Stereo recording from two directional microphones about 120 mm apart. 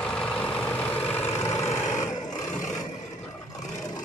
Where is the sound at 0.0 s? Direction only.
5° left (ahead or behind); by 1.8 s 25° left (ahead or behind).